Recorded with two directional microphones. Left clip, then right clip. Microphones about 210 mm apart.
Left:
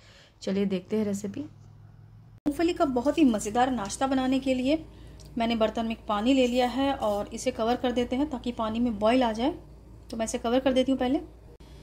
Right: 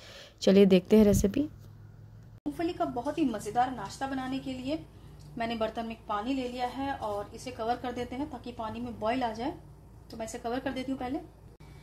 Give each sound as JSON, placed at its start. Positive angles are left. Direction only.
{"t": 0.1, "sound": "speech", "side_deg": -25}
{"t": 2.5, "sound": "a woman's voice", "side_deg": 25}
{"t": 5.4, "sound": "a woman's voice", "side_deg": 20}